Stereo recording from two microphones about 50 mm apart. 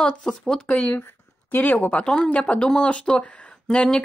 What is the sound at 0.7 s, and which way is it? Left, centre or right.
Speech, left.